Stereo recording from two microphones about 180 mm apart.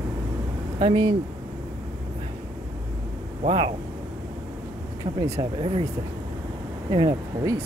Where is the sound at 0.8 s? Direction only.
25° right (ahead or behind).